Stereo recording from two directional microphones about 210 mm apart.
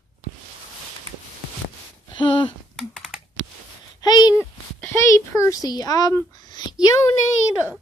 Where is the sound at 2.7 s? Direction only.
5° left (ahead or behind).